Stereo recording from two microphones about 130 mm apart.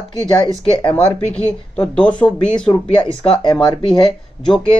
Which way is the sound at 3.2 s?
40° left (ahead or behind).